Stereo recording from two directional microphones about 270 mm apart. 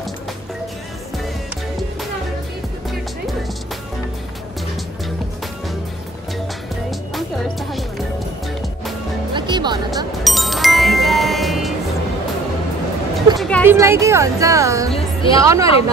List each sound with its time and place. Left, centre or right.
9.3 s music: centre
10.2 s music: centre
13.4 s music: centre
13.7 s speech: centre
14.9 s music: left
15.4 s speech: centre